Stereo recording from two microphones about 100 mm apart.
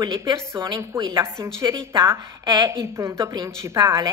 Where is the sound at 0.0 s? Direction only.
35° right (ahead or behind).